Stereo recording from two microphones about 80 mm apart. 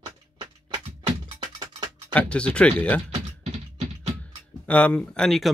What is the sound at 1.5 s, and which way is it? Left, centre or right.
Music, right.